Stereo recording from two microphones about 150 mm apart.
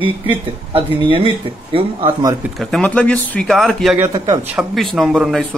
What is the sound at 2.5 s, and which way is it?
Speech, 5° left (ahead or behind).